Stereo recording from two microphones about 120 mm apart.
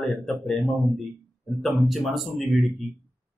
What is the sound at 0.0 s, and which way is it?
Speech, 5° left (ahead or behind).